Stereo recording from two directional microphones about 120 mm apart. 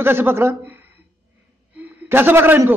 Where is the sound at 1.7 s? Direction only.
15° right (ahead or behind).